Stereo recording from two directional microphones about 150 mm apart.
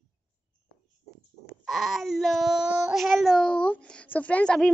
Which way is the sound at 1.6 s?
Centre (ahead or behind).